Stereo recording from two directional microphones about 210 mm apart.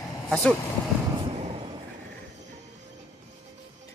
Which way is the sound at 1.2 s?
25° right (ahead or behind).